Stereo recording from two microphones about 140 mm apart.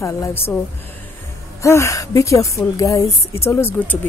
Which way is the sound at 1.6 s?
20° left (ahead or behind).